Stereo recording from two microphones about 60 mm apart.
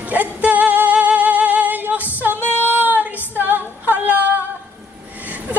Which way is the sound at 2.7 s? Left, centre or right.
Right.